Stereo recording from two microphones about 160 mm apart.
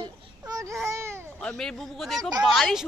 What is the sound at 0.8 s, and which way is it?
Speech, 15° right (ahead or behind).